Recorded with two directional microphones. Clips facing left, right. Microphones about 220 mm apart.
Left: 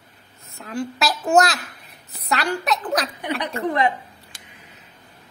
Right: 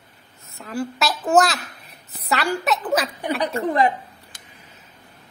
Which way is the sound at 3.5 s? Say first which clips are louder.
Right 1 dB; 40° right (ahead or behind).